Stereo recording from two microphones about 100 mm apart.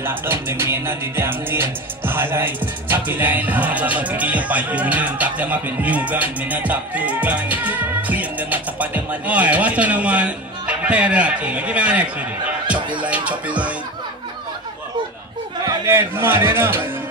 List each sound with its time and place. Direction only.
0.0 s music: 25° right (ahead or behind)
15.9 s a man's voice: 20° right (ahead or behind)